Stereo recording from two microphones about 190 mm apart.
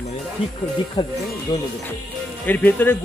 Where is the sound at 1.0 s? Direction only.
20° left (ahead or behind).